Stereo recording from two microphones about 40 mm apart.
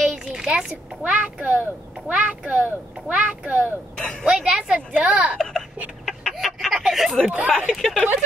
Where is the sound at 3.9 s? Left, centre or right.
Left.